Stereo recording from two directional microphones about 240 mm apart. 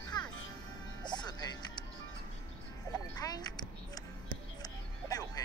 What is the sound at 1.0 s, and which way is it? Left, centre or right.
Music, centre.